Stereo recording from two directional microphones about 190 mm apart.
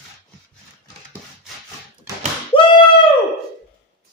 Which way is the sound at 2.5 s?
30° left (ahead or behind).